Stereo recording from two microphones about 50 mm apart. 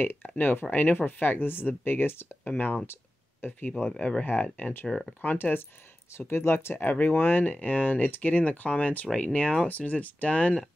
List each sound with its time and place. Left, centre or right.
0.0 s speech: left
2.5 s speech: left
2.9 s a sound: left
3.9 s speech: centre
4.2 s speech: left
4.8 s speech: centre
5.2 s speech: left
6.1 s speech: left